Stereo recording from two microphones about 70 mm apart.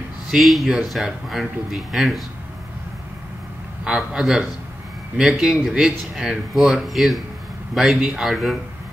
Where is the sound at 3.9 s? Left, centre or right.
Centre.